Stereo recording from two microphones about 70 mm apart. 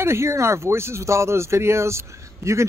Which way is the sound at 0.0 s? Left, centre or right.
Right.